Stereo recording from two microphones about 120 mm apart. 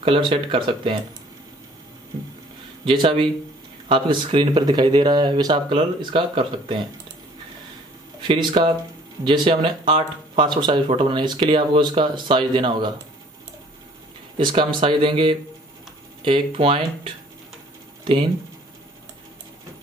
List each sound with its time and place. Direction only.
0.0 s speech: 45° right (ahead or behind)
2.8 s speech: 45° right (ahead or behind)
8.2 s speech: 40° right (ahead or behind)
14.3 s speech: 45° right (ahead or behind)
18.0 s speech: 40° right (ahead or behind)